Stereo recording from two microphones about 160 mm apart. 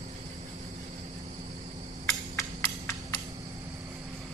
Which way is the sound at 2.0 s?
20° left (ahead or behind).